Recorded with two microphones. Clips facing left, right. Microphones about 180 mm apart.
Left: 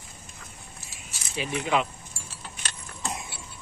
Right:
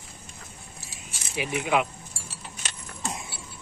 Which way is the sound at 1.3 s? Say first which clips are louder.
Right 1 dB; 10° right (ahead or behind).